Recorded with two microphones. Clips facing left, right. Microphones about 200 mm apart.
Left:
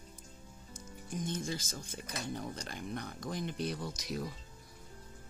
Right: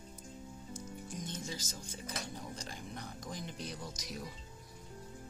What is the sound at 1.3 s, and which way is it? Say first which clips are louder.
Music: left 5 dB; 55° left (ahead or behind).